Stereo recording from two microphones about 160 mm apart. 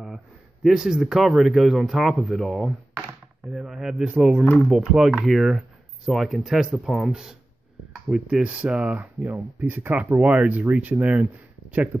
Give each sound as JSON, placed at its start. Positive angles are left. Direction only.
{"t": 0.7, "sound": "speech", "side_deg": -5}